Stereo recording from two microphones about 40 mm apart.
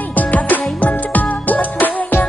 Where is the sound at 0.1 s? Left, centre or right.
Left.